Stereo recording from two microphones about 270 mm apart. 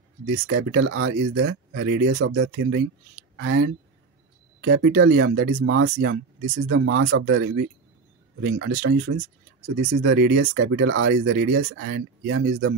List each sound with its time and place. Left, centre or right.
0.3 s speech: right